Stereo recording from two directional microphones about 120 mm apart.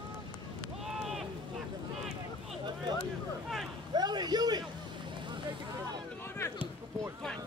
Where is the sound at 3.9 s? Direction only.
35° right (ahead or behind).